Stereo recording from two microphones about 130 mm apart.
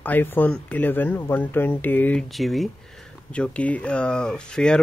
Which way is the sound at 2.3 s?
Centre (ahead or behind).